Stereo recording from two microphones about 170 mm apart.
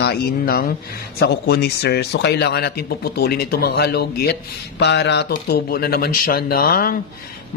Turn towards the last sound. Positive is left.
turn(degrees=60)  # may be behind; listen again after turning